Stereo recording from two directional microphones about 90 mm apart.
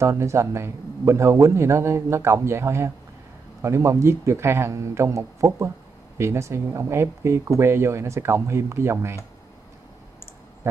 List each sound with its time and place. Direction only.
0.0 s speech: 30° right (ahead or behind)